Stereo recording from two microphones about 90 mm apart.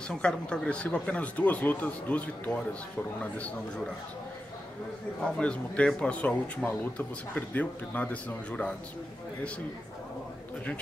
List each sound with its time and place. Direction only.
0.1 s speech: 10° left (ahead or behind)
5.2 s speech: 10° left (ahead or behind)